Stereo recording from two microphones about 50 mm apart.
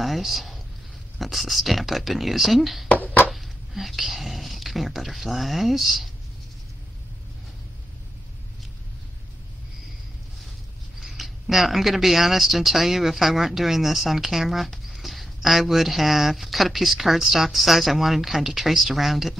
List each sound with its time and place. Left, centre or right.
0.0 s speech: centre
2.9 s a sound: left
3.3 s whispering: centre
11.0 s speech: centre